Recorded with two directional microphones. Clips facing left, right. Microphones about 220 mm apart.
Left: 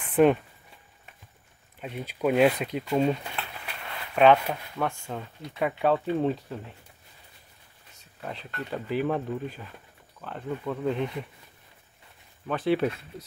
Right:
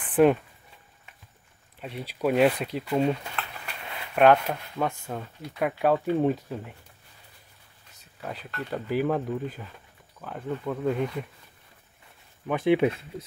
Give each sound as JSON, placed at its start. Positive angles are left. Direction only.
{"t": 0.0, "sound": "a sound", "side_deg": -5}
{"t": 1.8, "sound": "speech", "side_deg": 0}
{"t": 8.2, "sound": "speech", "side_deg": -5}
{"t": 12.4, "sound": "speech", "side_deg": -15}